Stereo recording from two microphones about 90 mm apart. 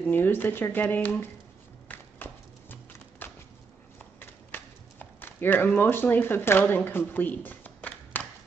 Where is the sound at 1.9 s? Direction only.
20° left (ahead or behind).